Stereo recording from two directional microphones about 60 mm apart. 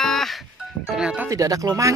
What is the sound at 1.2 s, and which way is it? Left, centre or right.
Speech, right.